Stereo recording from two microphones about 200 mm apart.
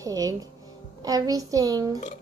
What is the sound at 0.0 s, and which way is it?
A woman's voice, 15° right (ahead or behind).